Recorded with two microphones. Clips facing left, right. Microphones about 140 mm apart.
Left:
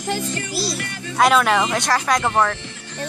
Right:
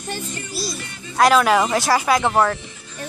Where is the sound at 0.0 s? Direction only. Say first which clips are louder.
Left 5 dB; 90° left; by 1.1 s 65° left (ahead or behind).